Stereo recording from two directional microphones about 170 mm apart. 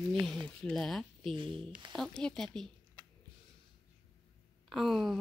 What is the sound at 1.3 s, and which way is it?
Speech, 30° right (ahead or behind).